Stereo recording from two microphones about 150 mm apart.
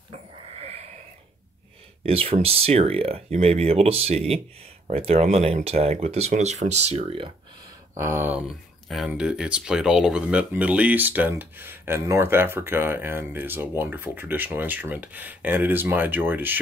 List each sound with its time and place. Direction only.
0.1 s a sound: 45° right (ahead or behind)
2.0 s speech: 40° right (ahead or behind)
7.9 s speech: 15° right (ahead or behind)
8.5 s speech: centre (ahead or behind)